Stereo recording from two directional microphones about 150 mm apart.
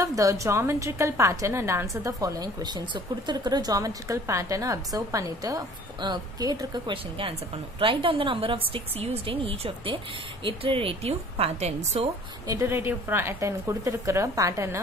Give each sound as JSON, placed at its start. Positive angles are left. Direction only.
{"t": 0.0, "sound": "a woman's voice", "side_deg": -20}
{"t": 12.4, "sound": "a woman's voice", "side_deg": -20}